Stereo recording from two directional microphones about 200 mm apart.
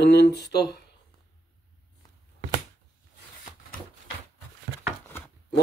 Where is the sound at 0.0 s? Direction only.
55° left (ahead or behind).